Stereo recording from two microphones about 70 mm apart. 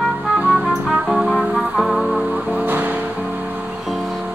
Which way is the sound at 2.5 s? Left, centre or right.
Right.